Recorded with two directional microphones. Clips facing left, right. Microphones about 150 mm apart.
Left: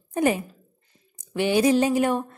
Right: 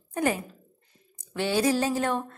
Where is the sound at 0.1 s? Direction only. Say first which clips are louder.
Left 4 dB; 15° left (ahead or behind).